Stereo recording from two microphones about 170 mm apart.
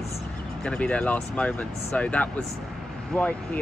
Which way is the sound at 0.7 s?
5° left (ahead or behind).